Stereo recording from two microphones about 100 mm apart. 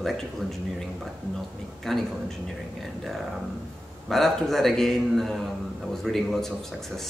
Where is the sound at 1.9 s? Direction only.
5° left (ahead or behind).